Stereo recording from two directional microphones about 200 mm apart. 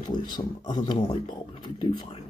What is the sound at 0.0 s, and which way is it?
Speech, 20° left (ahead or behind).